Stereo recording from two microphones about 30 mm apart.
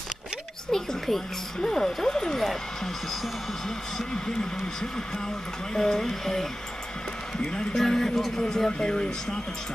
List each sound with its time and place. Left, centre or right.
0.7 s speech: centre
3.6 s speech: left
5.8 s speech: centre
7.8 s speech: centre
8.8 s speech: left